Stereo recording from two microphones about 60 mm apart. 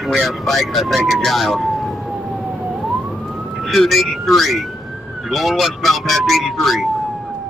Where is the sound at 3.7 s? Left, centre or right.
Centre.